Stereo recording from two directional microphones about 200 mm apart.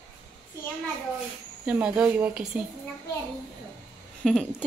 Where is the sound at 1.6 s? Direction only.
5° right (ahead or behind).